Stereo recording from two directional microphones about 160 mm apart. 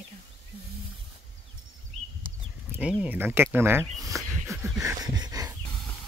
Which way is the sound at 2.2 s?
60° right (ahead or behind).